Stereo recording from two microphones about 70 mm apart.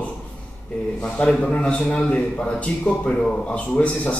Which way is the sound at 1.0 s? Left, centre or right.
Centre.